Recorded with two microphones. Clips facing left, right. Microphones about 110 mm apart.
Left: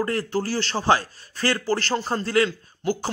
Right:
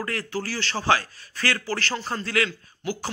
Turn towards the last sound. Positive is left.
turn(degrees=30)  # may be behind; listen again after turning